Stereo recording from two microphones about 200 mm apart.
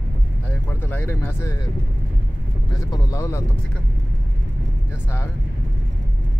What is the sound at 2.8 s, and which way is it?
Speech, 20° left (ahead or behind).